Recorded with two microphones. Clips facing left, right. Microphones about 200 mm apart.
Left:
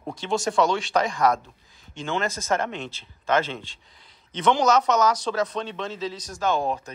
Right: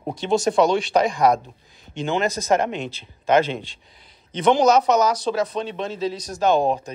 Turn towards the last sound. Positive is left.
turn(degrees=-20)  # may be behind; listen again after turning